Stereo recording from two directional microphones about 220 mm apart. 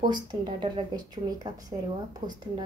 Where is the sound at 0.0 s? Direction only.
20° right (ahead or behind).